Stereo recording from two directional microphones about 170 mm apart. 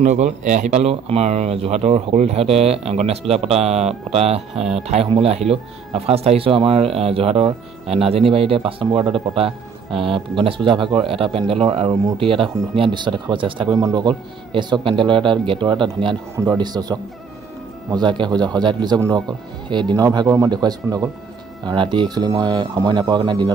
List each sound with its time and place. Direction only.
0.0 s a man's voice: 45° right (ahead or behind); by 19.2 s 15° right (ahead or behind)
19.7 s a man's voice: 25° right (ahead or behind)